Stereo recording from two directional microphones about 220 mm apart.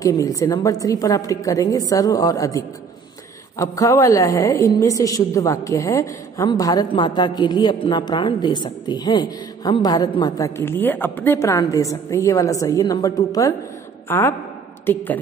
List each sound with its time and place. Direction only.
0.0 s a woman's voice: 15° left (ahead or behind)